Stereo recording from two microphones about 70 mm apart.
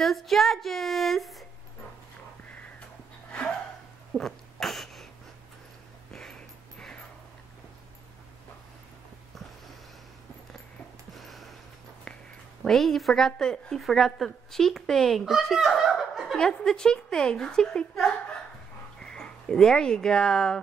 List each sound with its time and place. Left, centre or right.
0.0 s a woman's voice: centre
3.3 s a sound: centre
4.1 s cough: centre
6.1 s dog: centre
11.1 s a sound: centre
12.6 s a woman's voice: centre
16.4 s a woman's voice: centre